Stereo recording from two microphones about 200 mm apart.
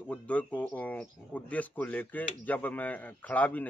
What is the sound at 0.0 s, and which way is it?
Speech, 5° left (ahead or behind).